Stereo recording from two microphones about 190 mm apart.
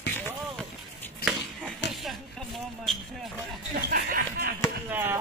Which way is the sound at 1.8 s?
65° left (ahead or behind).